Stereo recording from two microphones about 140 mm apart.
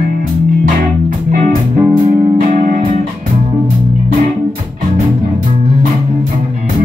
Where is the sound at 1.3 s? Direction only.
75° right (ahead or behind).